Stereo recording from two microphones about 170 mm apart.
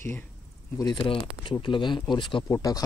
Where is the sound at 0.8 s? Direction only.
30° left (ahead or behind).